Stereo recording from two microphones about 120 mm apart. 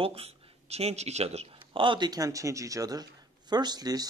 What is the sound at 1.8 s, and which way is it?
Speech, 40° right (ahead or behind).